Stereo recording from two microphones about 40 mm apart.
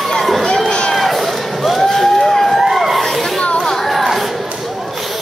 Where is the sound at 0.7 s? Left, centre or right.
Left.